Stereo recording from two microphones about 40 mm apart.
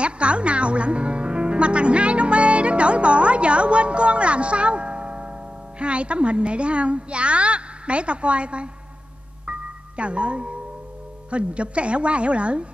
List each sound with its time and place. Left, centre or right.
0.0 s speech: right
9.5 s music: right
11.2 s a woman's voice: right